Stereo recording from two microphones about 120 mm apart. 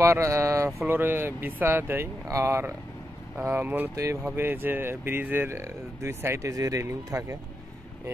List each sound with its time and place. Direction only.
0.0 s speech: 25° right (ahead or behind)